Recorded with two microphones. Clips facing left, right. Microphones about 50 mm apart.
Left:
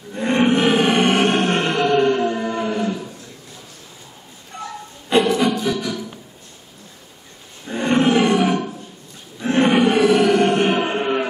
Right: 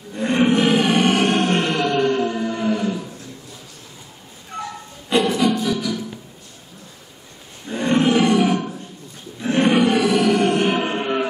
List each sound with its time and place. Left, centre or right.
0.1 s roar: centre
0.6 s music: left
2.6 s cattle: centre
5.1 s music: left
7.6 s roar: centre
8.1 s wild animals: left
9.4 s music: centre
10.8 s music: centre